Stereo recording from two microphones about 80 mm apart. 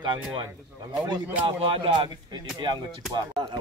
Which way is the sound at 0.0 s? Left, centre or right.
Right.